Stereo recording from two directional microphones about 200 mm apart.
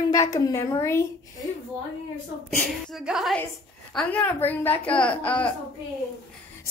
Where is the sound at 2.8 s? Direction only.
Centre (ahead or behind).